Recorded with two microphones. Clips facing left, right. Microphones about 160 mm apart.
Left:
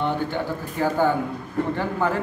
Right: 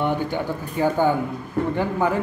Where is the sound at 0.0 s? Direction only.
15° right (ahead or behind).